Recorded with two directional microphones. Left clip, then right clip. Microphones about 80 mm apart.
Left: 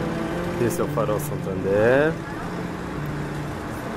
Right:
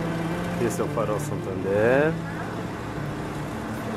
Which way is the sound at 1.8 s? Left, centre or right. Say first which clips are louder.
Left 2 dB; centre.